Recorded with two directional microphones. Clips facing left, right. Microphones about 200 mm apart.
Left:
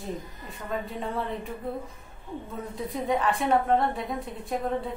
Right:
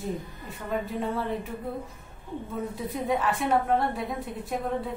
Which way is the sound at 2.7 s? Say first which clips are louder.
Left 2 dB; centre (ahead or behind).